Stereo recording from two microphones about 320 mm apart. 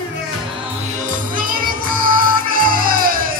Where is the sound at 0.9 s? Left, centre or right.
Right.